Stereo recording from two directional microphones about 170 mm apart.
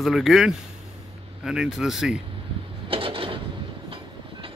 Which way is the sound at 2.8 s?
30° right (ahead or behind).